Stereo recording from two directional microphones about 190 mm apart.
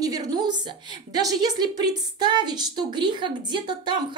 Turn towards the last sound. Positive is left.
turn(degrees=-25)  # may be behind; listen again after turning